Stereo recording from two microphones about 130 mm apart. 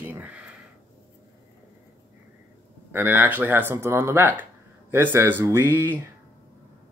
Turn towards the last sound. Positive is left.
turn(degrees=-15)  # may be behind; listen again after turning